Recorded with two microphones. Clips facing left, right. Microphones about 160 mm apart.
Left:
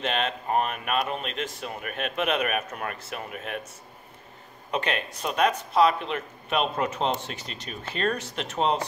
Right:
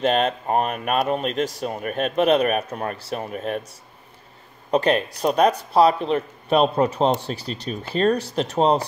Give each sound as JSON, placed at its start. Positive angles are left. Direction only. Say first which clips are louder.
{"t": 0.0, "sound": "speech", "louder": "right 8 dB", "side_deg": -40}
{"t": 4.6, "sound": "speech", "louder": "right 9 dB", "side_deg": -40}